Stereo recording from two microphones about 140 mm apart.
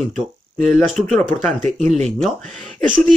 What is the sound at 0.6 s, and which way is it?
Speech, centre (ahead or behind).